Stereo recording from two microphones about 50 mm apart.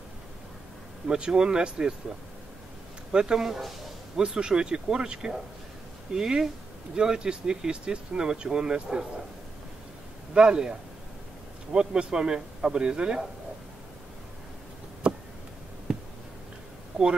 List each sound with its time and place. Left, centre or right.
1.0 s speech: centre
3.1 s speech: centre
4.2 s speech: centre
10.3 s speech: centre
15.0 s a sound: right
16.9 s speech: centre